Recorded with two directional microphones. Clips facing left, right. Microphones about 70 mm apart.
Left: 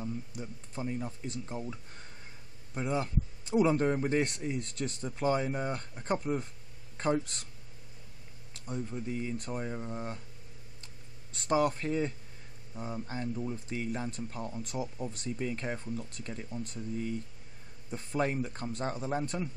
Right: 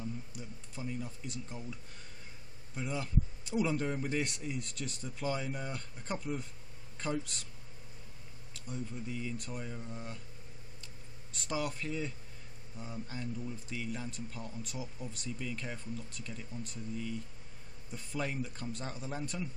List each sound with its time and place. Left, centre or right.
0.0 s speech: left
8.6 s speech: left
11.4 s speech: left